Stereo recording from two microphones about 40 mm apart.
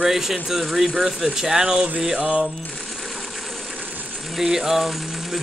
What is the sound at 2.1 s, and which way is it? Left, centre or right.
Speech, right.